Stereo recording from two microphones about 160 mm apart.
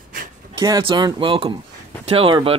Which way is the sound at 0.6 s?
30° right (ahead or behind).